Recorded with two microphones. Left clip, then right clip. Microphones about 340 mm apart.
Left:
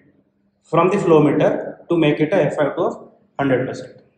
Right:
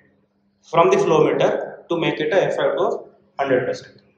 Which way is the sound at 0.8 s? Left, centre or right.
Left.